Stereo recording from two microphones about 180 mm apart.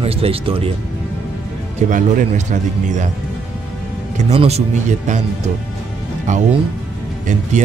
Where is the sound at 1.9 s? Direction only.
45° right (ahead or behind).